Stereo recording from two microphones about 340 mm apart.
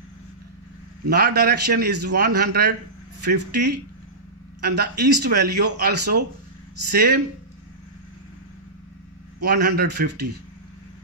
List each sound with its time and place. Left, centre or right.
1.0 s a man's voice: right
9.4 s a man's voice: right